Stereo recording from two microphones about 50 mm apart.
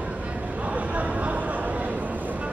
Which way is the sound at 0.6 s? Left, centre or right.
Right.